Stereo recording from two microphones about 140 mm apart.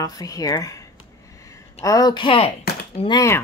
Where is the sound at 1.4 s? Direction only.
25° left (ahead or behind); by 3.1 s 45° left (ahead or behind).